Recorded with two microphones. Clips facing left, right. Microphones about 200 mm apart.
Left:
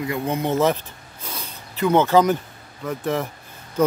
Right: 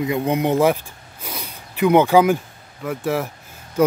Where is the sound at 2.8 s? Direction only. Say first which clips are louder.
Right 2 dB; 10° right (ahead or behind).